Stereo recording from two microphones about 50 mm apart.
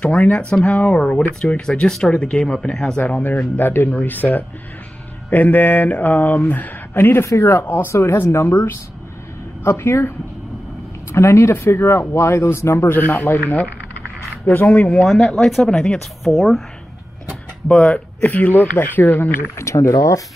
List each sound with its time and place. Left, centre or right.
0.0 s speech: left
1.4 s speech: centre
2.0 s speech: left
3.5 s speech: left
7.0 s speech: left
7.2 s speech: left
7.6 s a man's voice: left
11.5 s a man's voice: left
13.4 s speech: left
15.1 s speech: centre
16.3 s speech: centre
17.7 s speech: left
18.2 s speech: left
19.5 s speech: left